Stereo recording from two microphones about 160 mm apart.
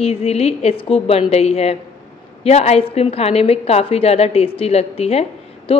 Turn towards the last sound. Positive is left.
turn(degrees=35)  # may be behind; listen again after turning